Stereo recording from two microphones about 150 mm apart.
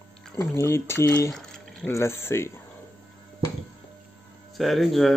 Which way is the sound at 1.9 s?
20° left (ahead or behind).